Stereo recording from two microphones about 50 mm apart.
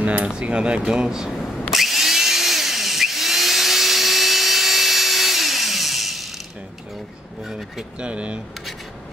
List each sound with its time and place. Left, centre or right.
0.0 s speech: right
1.7 s drill: centre
7.4 s speech: centre
8.0 s speech: right